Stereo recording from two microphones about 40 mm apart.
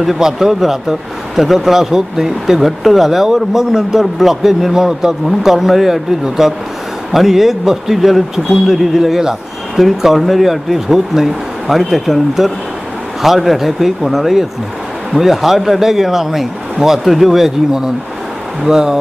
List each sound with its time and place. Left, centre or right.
0.0 s speech: centre